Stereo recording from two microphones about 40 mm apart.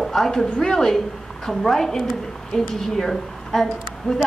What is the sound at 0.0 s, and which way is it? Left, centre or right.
A woman's voice, centre.